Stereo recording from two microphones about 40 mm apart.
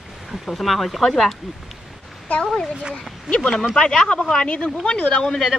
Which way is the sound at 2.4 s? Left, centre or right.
Centre.